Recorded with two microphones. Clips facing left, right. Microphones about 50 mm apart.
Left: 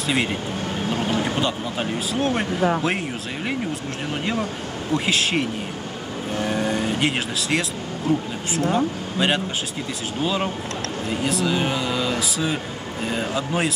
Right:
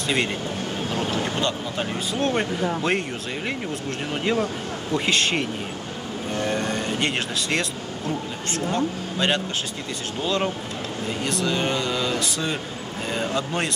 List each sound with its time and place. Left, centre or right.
0.0 s speech: centre